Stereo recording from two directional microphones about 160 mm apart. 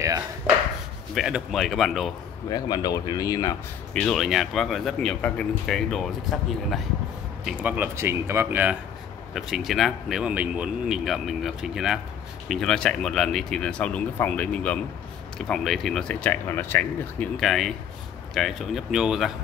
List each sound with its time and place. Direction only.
1.1 s speech: centre (ahead or behind)
2.5 s speech: 25° left (ahead or behind)
3.9 s speech: 5° left (ahead or behind)
7.4 s speech: 10° right (ahead or behind)
9.3 s speech: centre (ahead or behind)
17.4 s speech: centre (ahead or behind)